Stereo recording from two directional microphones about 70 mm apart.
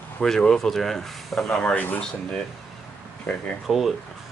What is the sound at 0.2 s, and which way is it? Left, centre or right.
Speech, centre.